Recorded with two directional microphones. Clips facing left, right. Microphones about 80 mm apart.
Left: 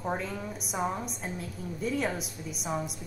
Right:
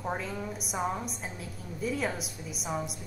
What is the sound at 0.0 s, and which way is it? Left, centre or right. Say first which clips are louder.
A woman's voice: left 1 dB; centre.